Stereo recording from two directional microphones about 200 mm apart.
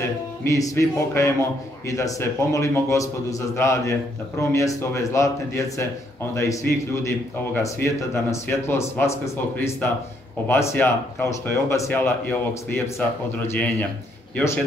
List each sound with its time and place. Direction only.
0.4 s a man's voice: 15° left (ahead or behind)